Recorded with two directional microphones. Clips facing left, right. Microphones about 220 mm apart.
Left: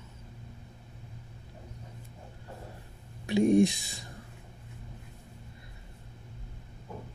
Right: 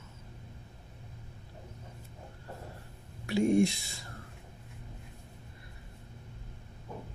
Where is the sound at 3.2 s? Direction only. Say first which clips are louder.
Left 3 dB; 15° left (ahead or behind).